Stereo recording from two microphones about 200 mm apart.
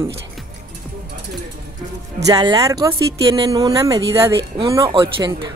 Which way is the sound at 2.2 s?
20° right (ahead or behind).